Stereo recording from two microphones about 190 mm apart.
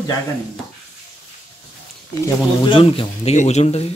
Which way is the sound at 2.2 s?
25° left (ahead or behind).